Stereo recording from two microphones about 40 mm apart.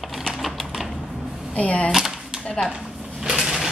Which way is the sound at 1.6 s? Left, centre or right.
Left.